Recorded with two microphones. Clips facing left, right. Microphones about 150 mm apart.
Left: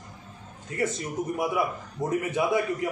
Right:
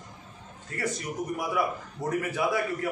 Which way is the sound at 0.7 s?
20° left (ahead or behind).